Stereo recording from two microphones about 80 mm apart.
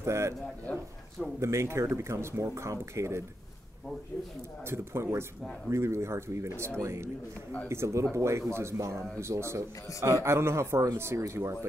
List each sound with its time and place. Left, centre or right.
0.0 s a man's voice: right
1.4 s speech: right
4.6 s speech: right